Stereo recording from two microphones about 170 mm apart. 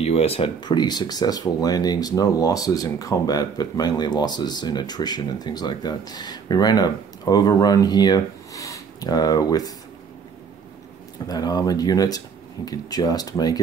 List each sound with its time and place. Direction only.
0.0 s speech: 35° left (ahead or behind); by 9.7 s 20° left (ahead or behind)
11.2 s speech: 25° left (ahead or behind)